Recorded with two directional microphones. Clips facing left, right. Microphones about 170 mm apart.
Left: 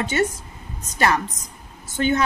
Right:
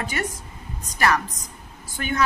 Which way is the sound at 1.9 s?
25° left (ahead or behind).